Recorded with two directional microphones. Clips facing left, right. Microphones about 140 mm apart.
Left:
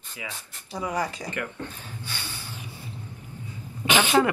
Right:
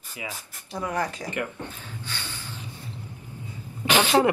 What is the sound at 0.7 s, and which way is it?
Speech, 5° left (ahead or behind).